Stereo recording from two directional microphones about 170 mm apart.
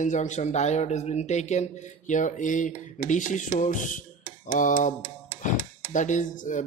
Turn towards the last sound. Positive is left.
turn(degrees=50)  # may be behind; listen again after turning